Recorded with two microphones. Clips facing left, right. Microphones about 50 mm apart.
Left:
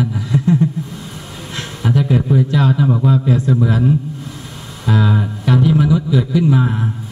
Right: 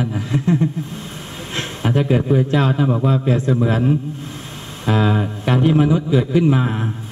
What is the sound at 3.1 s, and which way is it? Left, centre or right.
Speech, right.